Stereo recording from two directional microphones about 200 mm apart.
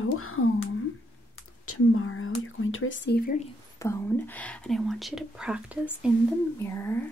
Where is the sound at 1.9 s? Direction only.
90° left.